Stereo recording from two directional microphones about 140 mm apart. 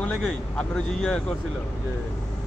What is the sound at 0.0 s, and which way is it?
Speech, 5° left (ahead or behind).